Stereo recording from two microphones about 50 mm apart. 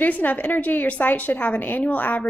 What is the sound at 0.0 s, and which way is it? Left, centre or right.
Speech, left.